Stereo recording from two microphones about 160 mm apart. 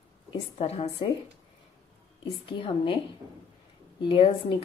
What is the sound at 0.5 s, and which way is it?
Speech, 40° left (ahead or behind).